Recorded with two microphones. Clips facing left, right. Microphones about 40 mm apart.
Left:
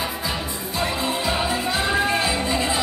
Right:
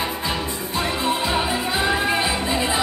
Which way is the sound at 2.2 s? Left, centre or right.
Centre.